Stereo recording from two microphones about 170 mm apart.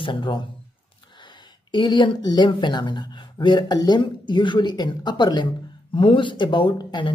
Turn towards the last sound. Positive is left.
turn(degrees=30)  # may be behind; listen again after turning